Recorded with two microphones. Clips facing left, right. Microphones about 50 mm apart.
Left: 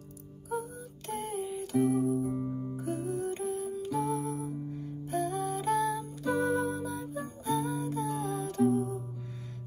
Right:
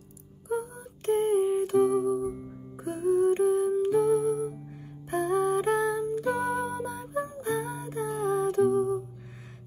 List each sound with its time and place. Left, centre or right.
0.5 s music: right